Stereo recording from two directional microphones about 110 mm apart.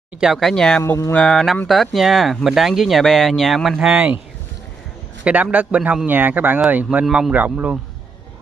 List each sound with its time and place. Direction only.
0.2 s speech: centre (ahead or behind)
5.2 s speech: 15° right (ahead or behind)